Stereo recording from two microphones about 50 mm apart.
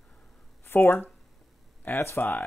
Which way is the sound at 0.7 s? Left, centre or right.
Left.